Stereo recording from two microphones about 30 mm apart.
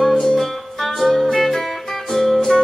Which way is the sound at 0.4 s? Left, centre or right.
Centre.